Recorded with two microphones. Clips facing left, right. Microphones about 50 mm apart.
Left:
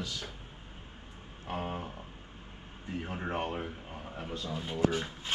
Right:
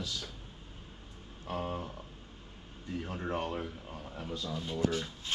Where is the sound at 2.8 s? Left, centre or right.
Left.